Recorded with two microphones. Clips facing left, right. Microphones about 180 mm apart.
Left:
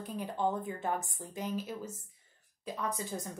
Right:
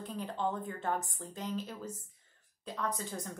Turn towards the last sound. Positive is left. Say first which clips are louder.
# left 1 dB
turn(degrees=10)  # may be behind; listen again after turning